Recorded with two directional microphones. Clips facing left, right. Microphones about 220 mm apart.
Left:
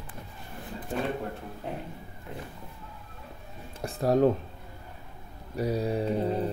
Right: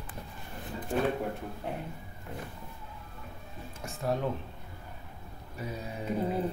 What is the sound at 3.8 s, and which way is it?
Speech, 40° left (ahead or behind).